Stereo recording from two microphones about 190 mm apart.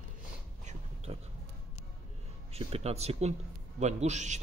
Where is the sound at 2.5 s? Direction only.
30° right (ahead or behind).